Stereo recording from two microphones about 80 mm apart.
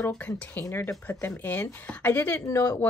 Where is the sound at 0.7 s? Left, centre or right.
Left.